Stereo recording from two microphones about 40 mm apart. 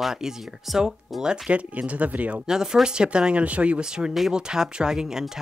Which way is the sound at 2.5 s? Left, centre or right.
Centre.